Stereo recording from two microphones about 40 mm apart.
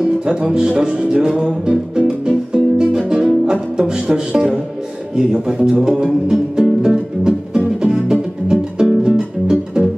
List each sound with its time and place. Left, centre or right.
0.2 s music: centre
5.1 s speech: centre
5.7 s music: right